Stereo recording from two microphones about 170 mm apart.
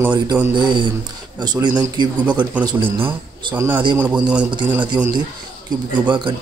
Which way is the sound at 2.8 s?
10° right (ahead or behind).